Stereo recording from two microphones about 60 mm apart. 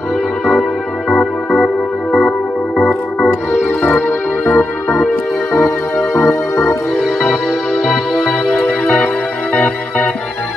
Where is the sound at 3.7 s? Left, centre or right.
Left.